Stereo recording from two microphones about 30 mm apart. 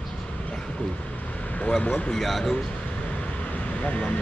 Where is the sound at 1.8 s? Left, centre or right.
Left.